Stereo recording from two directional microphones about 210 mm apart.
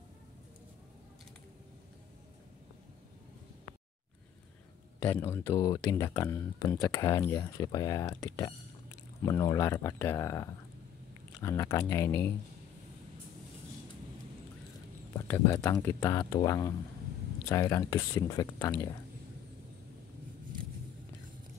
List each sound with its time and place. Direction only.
5.0 s speech: 10° left (ahead or behind)
9.2 s speech: 15° left (ahead or behind)
15.1 s speech: 10° left (ahead or behind)